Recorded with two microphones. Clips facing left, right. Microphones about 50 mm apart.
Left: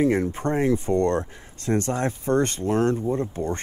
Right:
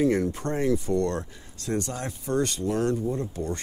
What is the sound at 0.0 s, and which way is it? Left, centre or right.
Speech, left.